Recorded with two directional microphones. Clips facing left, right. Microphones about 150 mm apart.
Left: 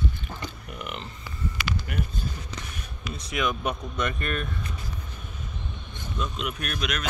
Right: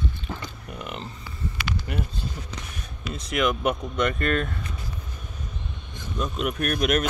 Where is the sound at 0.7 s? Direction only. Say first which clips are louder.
Right 3 dB; 35° right (ahead or behind).